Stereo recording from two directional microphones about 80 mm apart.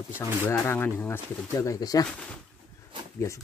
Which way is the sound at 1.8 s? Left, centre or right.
Left.